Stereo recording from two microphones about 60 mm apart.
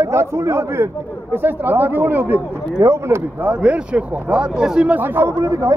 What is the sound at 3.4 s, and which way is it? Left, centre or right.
Speech, right.